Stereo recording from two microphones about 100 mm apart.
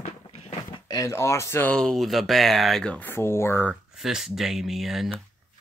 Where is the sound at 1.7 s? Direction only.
5° left (ahead or behind).